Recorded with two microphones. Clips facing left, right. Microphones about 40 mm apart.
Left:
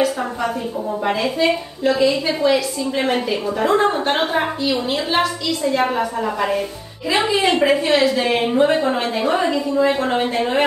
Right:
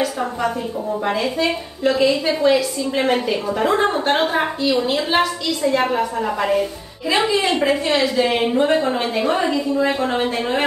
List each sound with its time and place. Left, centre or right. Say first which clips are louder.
0.0 s a woman's voice: left 1 dB; centre
1.9 s a woman's voice: even; centre
5.9 s a woman's voice: even; centre